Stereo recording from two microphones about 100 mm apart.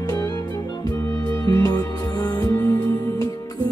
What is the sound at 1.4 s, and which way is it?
Music, 35° left (ahead or behind).